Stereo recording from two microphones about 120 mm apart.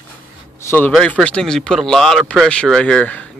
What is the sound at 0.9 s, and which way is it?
Speech, 5° left (ahead or behind).